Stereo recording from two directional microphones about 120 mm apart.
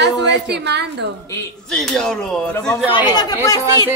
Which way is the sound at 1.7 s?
5° left (ahead or behind).